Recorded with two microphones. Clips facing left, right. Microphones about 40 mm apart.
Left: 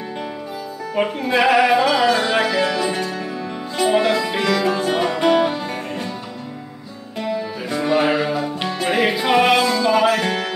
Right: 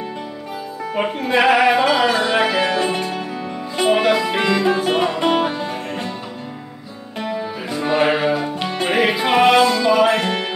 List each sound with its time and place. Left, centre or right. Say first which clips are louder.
1.0 s music: right 2 dB; centre
2.7 s music: right 2 dB; right
3.9 s music: right 2 dB; centre
7.8 s music: right 1 dB; centre
9.5 s music: right 2 dB; centre